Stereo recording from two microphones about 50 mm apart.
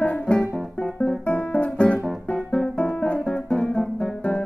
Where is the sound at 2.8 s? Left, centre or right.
Left.